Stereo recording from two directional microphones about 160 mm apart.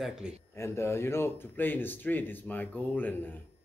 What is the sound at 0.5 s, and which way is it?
Speech, 15° left (ahead or behind).